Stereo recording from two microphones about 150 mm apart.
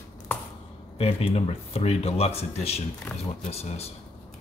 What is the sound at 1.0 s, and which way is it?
Speech, 40° left (ahead or behind).